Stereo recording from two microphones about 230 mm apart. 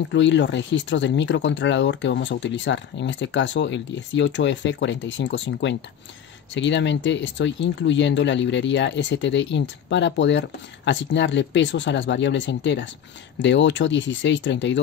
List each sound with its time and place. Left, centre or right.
0.1 s speech: left